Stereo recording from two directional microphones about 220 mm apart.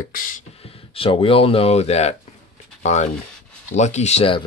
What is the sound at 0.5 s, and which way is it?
Speech, 25° left (ahead or behind).